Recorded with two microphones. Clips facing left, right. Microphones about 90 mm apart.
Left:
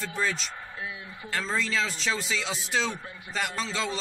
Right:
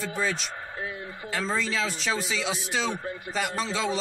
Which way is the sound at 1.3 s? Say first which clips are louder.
Right 1 dB; 5° right (ahead or behind).